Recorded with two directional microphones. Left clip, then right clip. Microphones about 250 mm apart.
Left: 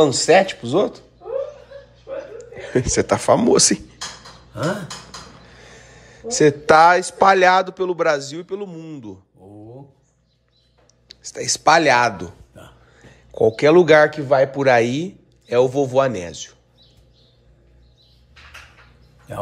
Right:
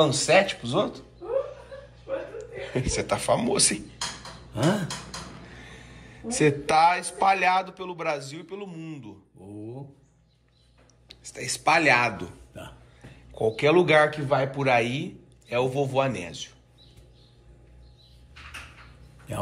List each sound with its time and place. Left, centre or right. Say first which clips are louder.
0.0 s a man's voice: left 6 dB; left
2.3 s speech: left 9 dB; left
5.5 s a sound: left 2 dB; left
7.4 s a man's voice: left 9 dB; left
11.1 s speech: left 9 dB; left
13.3 s a man's voice: left 8 dB; left